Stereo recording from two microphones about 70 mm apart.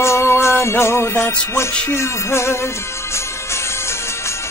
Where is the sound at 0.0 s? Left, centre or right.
Left.